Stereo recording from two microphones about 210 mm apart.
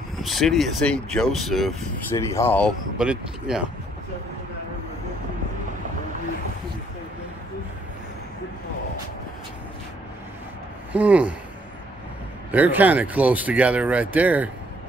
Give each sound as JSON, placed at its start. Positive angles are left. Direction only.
{"t": 0.2, "sound": "speech", "side_deg": 0}
{"t": 2.1, "sound": "speech", "side_deg": 10}
{"t": 3.0, "sound": "speech", "side_deg": -5}
{"t": 10.9, "sound": "speech", "side_deg": -5}
{"t": 12.4, "sound": "speech", "side_deg": -10}